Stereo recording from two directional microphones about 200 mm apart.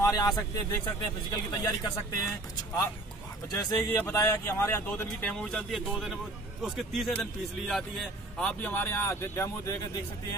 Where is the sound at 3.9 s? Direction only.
15° left (ahead or behind).